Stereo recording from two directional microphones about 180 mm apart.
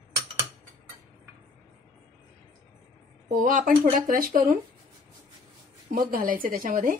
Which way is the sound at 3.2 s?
45° right (ahead or behind).